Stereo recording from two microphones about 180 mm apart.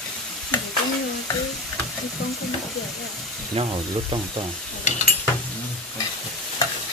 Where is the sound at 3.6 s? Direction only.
35° right (ahead or behind).